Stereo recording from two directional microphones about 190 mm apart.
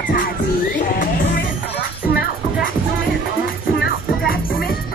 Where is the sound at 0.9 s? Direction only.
35° left (ahead or behind).